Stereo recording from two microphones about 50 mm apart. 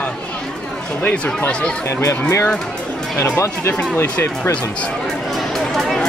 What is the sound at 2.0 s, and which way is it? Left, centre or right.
Speech, left.